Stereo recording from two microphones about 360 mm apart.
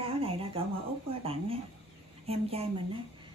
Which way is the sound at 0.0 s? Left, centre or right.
Centre.